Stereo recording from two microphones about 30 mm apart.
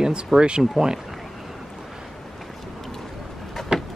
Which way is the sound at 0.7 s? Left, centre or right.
Right.